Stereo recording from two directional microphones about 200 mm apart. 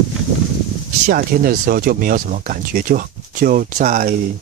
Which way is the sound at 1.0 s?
45° right (ahead or behind).